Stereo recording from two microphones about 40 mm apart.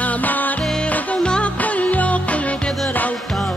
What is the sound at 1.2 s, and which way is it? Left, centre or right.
Music, left.